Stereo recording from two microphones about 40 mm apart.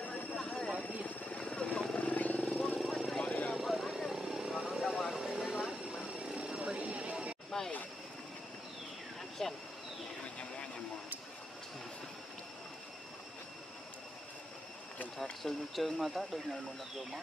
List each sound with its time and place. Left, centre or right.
0.1 s vehicle: left
1.0 s helicopter: left
2.0 s vehicle: left
2.6 s vehicle: centre
3.2 s vehicle: left
3.5 s vehicle: centre
4.8 s vehicle: centre
5.1 s vehicle: centre
6.1 s vehicle: centre
6.8 s a sound: right
7.5 s vehicle: centre
9.4 s speech: centre
15.4 s speech: centre